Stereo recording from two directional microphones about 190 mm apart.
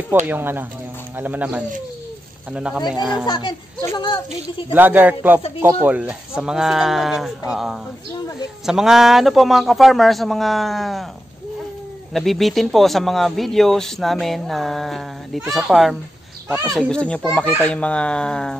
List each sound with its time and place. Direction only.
0.3 s speech: 10° right (ahead or behind)
3.3 s a child's voice: 25° left (ahead or behind)
4.7 s speech: 10° right (ahead or behind)
12.1 s speech: centre (ahead or behind)
16.4 s speech: 15° right (ahead or behind)
16.7 s speech: 5° left (ahead or behind)